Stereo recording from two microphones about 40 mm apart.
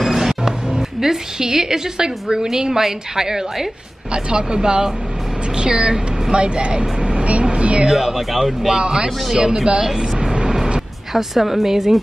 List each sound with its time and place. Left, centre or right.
0.0 s a woman's voice: centre; by 7.4 s right
7.4 s a sound: right
7.8 s speech: centre
10.3 s vehicle: centre
11.1 s speech: centre